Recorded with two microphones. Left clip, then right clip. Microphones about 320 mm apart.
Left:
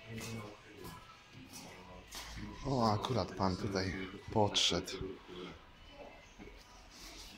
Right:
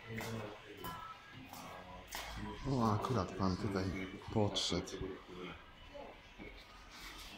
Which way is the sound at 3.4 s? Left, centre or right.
Centre.